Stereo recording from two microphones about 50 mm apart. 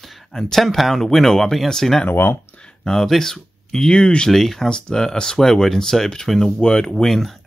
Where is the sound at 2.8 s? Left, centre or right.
Centre.